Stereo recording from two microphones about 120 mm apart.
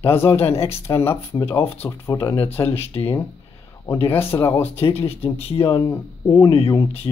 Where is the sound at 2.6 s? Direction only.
55° left (ahead or behind).